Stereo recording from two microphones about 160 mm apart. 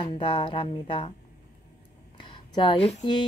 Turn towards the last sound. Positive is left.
turn(degrees=30)  # may be behind; listen again after turning